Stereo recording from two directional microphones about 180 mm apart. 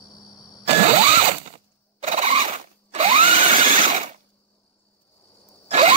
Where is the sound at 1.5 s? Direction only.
35° right (ahead or behind).